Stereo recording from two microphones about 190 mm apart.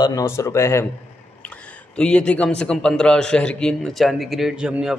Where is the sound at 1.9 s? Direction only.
5° left (ahead or behind).